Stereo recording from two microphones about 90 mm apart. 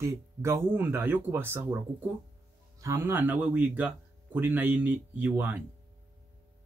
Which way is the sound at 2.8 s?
35° right (ahead or behind).